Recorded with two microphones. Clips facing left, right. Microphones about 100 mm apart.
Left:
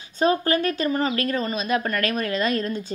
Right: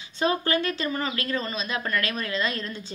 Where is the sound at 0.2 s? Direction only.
40° left (ahead or behind).